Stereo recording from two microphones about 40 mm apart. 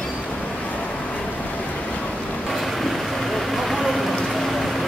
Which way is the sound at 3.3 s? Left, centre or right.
Centre.